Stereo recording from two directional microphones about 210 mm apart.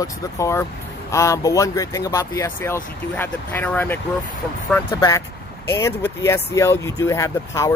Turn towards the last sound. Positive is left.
turn(degrees=15)  # may be behind; listen again after turning